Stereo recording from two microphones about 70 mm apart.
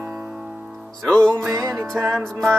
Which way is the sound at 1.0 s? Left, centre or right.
Centre.